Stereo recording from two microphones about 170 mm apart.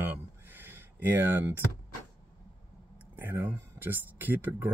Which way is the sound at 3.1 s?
10° right (ahead or behind).